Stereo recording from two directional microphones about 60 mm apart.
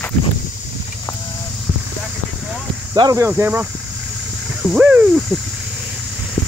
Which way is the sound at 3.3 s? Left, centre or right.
Right.